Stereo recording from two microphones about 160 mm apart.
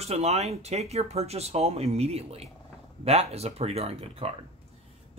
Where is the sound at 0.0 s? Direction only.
40° right (ahead or behind).